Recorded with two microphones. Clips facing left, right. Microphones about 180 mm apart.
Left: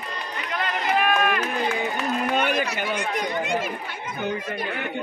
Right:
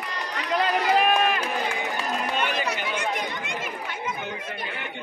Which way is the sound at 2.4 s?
50° left (ahead or behind).